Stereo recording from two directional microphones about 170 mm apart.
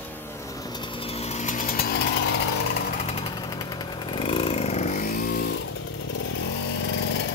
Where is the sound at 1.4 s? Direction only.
50° left (ahead or behind).